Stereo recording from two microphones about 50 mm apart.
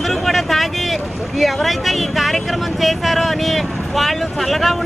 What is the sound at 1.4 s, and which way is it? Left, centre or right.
Speech, centre.